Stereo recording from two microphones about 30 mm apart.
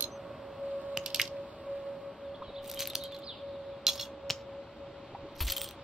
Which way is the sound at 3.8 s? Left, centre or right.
Centre.